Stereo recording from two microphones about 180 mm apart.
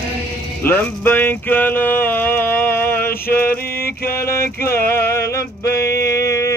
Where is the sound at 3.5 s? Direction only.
55° left (ahead or behind).